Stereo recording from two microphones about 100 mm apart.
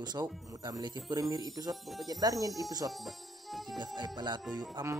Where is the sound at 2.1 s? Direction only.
40° right (ahead or behind).